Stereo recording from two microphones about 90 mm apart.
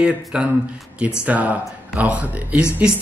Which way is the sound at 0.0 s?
10° right (ahead or behind).